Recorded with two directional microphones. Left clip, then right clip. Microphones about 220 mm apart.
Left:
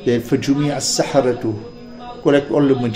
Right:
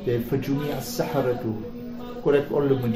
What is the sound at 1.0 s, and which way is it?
Speech, 50° left (ahead or behind).